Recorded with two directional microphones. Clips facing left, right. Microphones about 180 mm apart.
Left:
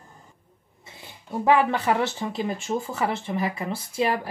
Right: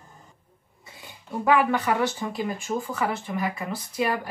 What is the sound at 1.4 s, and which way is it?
Speech, 25° left (ahead or behind).